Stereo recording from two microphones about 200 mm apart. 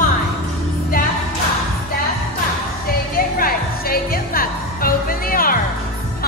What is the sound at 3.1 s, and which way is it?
Music, 45° left (ahead or behind).